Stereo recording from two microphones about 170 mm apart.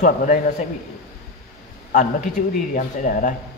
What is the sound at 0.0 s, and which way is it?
Speech, 50° left (ahead or behind).